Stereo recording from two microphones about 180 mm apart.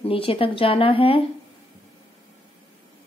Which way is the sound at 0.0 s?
30° left (ahead or behind).